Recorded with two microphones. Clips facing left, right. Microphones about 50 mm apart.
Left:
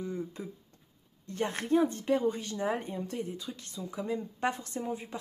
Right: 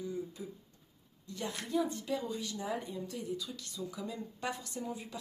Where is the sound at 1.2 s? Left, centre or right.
Left.